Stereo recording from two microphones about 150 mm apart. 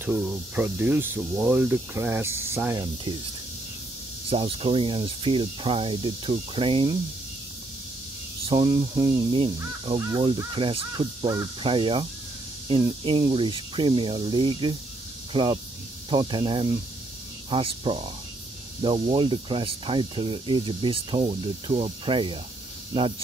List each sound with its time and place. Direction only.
0.0 s speech: 10° right (ahead or behind); by 3.2 s 25° right (ahead or behind)
4.3 s speech: 40° right (ahead or behind)
8.5 s speech: 30° right (ahead or behind)